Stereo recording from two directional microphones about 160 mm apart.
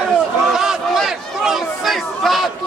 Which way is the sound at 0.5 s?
Centre (ahead or behind).